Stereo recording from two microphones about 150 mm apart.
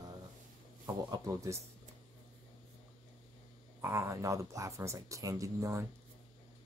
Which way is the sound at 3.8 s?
20° right (ahead or behind).